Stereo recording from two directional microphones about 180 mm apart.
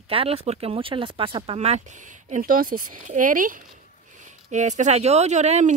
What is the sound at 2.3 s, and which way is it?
Speech, 50° right (ahead or behind).